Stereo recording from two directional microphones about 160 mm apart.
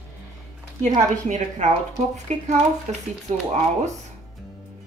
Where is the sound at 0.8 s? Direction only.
45° right (ahead or behind).